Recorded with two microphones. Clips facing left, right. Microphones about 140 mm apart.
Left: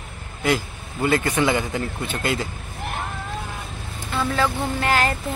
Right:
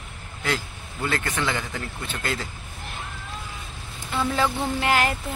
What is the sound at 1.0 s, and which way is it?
Speech, 15° left (ahead or behind).